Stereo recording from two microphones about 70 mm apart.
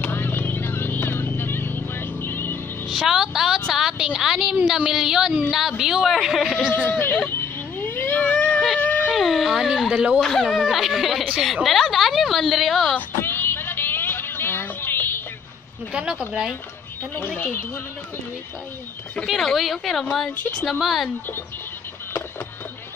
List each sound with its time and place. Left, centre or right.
0.0 s vehicle: left
2.9 s music: centre
3.7 s a sound: centre
4.9 s a woman's voice: centre
6.9 s speech: left
7.2 s a sound: left
8.7 s dog: left
9.1 s speech: centre
10.2 s a woman's voice: centre
13.1 s a sound: left
15.9 s speech: centre
17.2 s speech: left
19.2 s a woman's voice: centre